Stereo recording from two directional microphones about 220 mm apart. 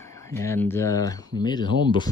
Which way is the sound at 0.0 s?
10° left (ahead or behind).